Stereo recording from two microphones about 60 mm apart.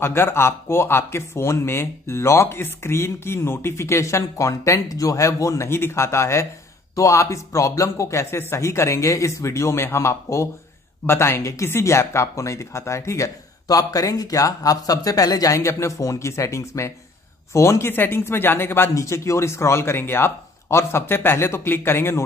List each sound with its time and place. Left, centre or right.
0.0 s speech: left
5.7 s speech: left
7.0 s speech: left
18.9 s speech: left